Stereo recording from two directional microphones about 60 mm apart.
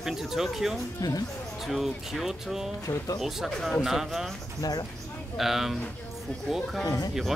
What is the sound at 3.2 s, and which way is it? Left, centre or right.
Speech, centre.